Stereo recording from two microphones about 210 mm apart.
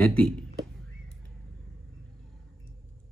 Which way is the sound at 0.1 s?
5° left (ahead or behind).